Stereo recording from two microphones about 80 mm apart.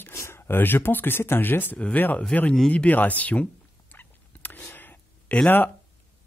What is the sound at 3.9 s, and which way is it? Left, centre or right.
Rodents, left.